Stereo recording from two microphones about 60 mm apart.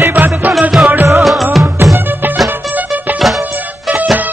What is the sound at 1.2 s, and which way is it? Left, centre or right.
Music, centre.